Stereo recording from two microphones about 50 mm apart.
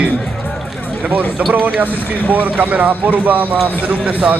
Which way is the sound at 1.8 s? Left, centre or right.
Right.